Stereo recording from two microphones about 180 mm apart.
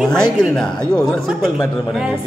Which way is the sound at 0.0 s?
5° left (ahead or behind).